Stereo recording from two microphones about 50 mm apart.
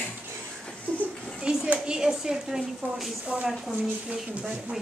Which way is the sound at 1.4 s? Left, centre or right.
Centre.